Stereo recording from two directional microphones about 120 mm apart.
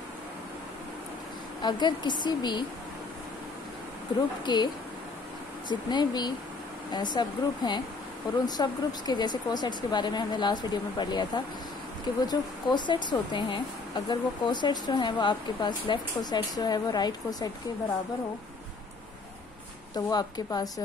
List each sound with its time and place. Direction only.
1.6 s speech: 40° left (ahead or behind)
4.5 s speech: 40° left (ahead or behind)
5.7 s speech: 35° left (ahead or behind)
19.9 s speech: 35° left (ahead or behind)